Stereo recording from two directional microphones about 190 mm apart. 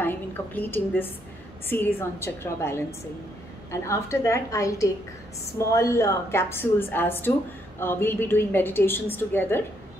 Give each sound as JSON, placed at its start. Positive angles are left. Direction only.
{"t": 0.6, "sound": "a woman's voice", "side_deg": 10}
{"t": 3.8, "sound": "a woman's voice", "side_deg": 15}